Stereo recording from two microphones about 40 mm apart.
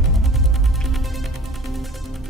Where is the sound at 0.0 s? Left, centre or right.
Centre.